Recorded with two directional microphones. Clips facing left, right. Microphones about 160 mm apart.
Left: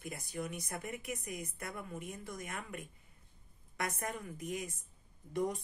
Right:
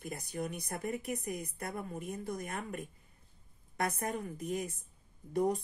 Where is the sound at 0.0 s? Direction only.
35° right (ahead or behind).